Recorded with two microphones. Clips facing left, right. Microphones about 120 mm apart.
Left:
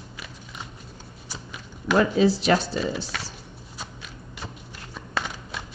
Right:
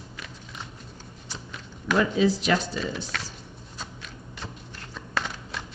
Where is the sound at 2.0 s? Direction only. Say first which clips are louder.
Left 2 dB; 35° left (ahead or behind).